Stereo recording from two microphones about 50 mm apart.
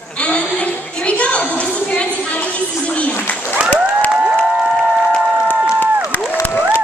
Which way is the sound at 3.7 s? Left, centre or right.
Left.